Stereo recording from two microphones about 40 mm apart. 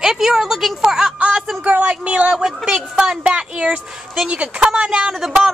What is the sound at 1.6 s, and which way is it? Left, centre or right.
Speech, right.